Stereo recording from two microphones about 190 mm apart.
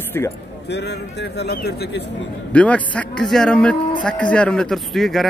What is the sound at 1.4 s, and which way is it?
Speech, 60° left (ahead or behind).